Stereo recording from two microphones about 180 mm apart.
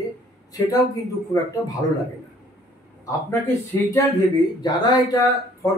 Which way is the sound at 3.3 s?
15° left (ahead or behind).